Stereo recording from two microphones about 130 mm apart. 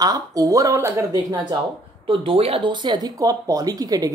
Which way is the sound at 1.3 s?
35° right (ahead or behind).